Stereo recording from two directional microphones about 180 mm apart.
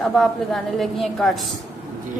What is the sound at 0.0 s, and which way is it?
A woman's voice, centre (ahead or behind).